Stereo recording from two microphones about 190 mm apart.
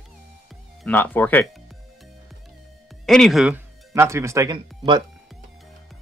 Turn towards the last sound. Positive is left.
turn(degrees=-25)  # may be behind; listen again after turning